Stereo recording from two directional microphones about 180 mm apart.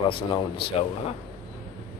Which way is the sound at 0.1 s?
30° left (ahead or behind).